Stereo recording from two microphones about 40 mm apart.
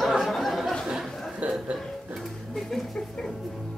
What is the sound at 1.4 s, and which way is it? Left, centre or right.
Music, right.